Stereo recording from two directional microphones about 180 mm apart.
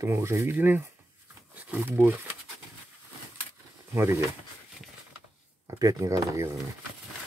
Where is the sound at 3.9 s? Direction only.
15° right (ahead or behind).